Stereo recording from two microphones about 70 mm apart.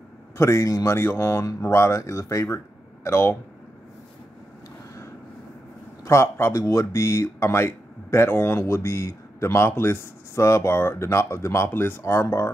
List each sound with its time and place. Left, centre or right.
0.4 s speech: left
0.9 s speech: left
6.0 s speech: left
6.5 s speech: left